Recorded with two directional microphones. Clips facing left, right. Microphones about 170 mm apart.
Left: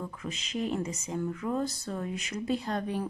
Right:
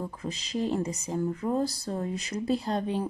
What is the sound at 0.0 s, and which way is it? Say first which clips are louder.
Speech: right 3 dB; 35° right (ahead or behind).